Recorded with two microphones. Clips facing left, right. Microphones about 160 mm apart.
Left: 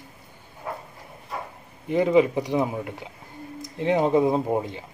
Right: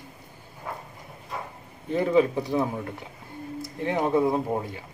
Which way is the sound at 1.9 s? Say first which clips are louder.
Left 2 dB; 15° left (ahead or behind).